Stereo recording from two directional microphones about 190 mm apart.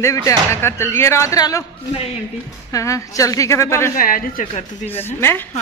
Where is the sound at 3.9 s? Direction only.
50° left (ahead or behind).